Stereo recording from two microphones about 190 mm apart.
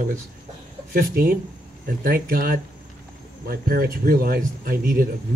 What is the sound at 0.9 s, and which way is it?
Speech, 50° right (ahead or behind).